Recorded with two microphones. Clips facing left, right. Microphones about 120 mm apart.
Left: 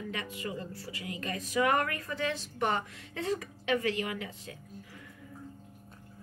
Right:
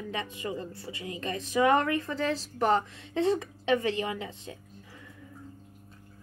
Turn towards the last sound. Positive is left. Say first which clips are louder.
# right 3 dB
turn(degrees=-25)  # may be behind; listen again after turning